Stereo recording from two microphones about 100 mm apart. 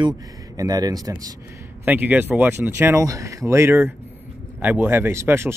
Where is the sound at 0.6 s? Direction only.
40° right (ahead or behind).